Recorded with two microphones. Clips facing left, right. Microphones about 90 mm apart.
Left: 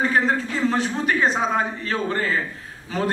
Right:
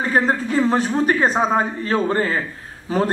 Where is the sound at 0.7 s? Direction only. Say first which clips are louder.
Right 2 dB; 40° right (ahead or behind).